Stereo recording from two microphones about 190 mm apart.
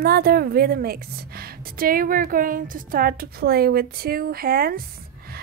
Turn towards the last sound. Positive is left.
turn(degrees=-50)  # may be behind; listen again after turning